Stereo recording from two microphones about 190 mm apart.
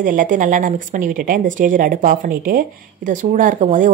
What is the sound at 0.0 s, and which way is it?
Speech, 45° right (ahead or behind).